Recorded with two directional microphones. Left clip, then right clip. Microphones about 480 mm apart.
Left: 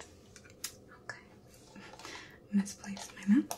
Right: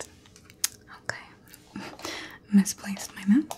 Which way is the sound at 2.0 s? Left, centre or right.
Centre.